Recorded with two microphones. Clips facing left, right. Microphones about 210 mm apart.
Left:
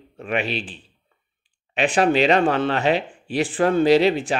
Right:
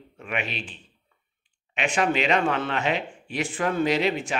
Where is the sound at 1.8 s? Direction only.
35° left (ahead or behind).